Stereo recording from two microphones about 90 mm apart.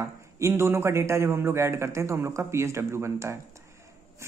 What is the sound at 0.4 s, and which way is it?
Speech, 30° right (ahead or behind).